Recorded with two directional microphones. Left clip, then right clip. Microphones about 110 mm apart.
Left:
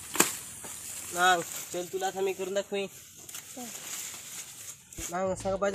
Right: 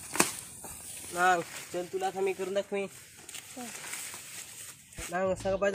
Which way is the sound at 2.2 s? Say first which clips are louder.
Even; 15° right (ahead or behind).